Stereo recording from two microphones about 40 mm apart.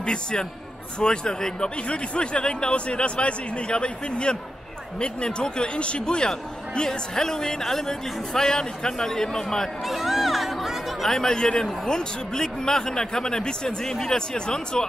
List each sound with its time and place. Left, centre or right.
0.0 s speech: left
9.8 s music: centre
11.1 s speech: centre